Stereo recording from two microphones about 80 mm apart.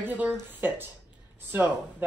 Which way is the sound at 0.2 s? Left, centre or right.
Right.